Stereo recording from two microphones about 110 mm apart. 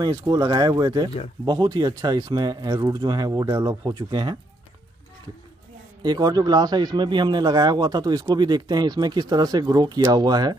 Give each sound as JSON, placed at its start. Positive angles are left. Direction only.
{"t": 0.0, "sound": "speech", "side_deg": -35}
{"t": 6.0, "sound": "speech", "side_deg": -40}